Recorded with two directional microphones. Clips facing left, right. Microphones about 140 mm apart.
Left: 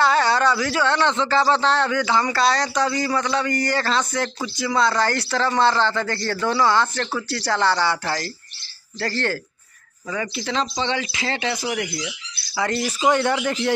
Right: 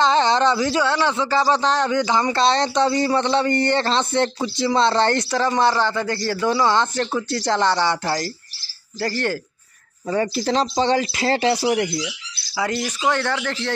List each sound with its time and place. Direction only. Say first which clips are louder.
0.0 s speech: right 1 dB; 20° right (ahead or behind)
10.1 s speech: right 5 dB; 40° right (ahead or behind)
12.5 s speech: even; 10° right (ahead or behind)
13.0 s speech: left 3 dB; 15° left (ahead or behind)